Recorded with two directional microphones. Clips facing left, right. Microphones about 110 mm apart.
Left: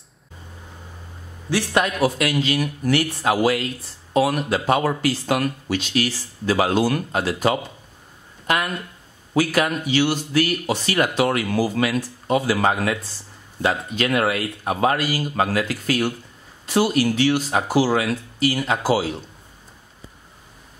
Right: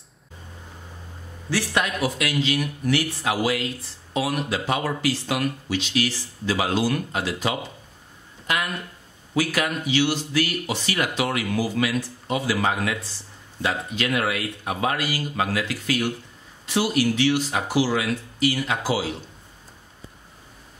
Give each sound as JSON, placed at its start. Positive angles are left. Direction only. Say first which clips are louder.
{"t": 1.7, "sound": "speech", "louder": "left 6 dB", "side_deg": 35}
{"t": 9.3, "sound": "speech", "louder": "left 4 dB", "side_deg": 40}